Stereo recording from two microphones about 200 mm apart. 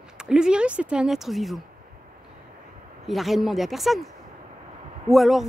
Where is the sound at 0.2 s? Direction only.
5° right (ahead or behind).